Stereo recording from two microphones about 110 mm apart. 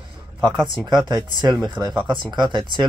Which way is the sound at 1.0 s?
40° right (ahead or behind).